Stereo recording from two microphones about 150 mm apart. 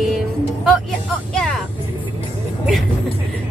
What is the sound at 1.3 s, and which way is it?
Vehicle, 5° left (ahead or behind).